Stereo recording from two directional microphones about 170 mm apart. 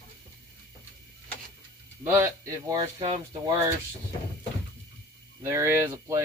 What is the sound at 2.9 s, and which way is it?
Speech, 35° right (ahead or behind).